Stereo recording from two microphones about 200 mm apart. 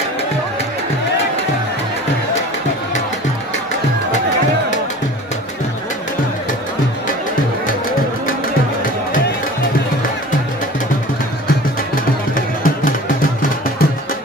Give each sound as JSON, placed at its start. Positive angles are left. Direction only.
{"t": 11.9, "sound": "music", "side_deg": 45}